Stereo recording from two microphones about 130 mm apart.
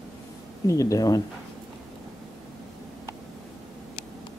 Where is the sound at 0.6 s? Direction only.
25° left (ahead or behind).